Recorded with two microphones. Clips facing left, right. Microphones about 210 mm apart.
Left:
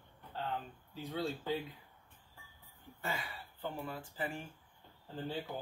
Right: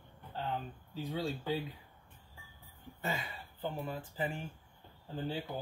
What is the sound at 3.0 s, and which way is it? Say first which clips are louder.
Speech: right 2 dB; 20° right (ahead or behind).